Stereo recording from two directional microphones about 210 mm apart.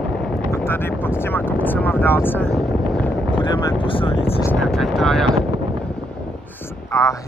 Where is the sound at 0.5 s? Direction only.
10° left (ahead or behind).